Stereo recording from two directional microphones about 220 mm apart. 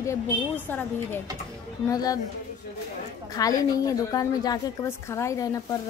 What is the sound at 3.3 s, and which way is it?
A woman's voice, 15° left (ahead or behind).